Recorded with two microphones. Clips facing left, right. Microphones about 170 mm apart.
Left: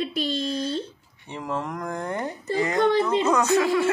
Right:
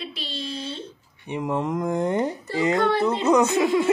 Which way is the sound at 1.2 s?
15° right (ahead or behind).